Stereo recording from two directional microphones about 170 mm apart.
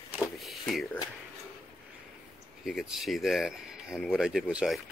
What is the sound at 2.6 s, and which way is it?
Speech, centre (ahead or behind).